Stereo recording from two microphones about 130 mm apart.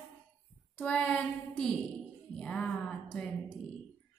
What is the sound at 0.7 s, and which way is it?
Speech, 10° left (ahead or behind).